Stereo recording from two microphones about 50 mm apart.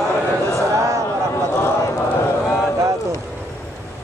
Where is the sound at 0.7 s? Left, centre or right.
Right.